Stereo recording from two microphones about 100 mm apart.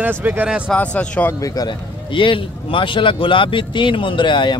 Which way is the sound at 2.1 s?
55° left (ahead or behind).